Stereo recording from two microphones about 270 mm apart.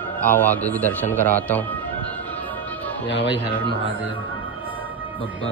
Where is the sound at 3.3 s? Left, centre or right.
Centre.